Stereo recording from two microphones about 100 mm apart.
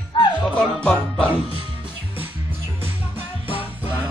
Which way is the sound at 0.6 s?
10° left (ahead or behind).